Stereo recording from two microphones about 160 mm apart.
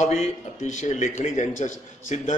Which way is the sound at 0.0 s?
45° left (ahead or behind).